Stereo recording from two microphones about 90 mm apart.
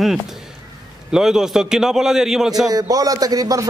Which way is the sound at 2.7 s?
40° right (ahead or behind).